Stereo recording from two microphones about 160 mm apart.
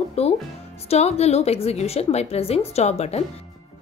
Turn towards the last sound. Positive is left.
turn(degrees=40)  # may be behind; listen again after turning